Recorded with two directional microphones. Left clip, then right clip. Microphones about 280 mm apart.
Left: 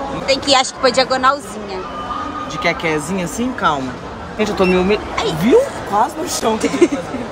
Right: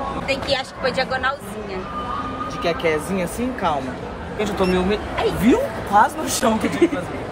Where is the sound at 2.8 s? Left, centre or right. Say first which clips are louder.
Left 2 dB; left.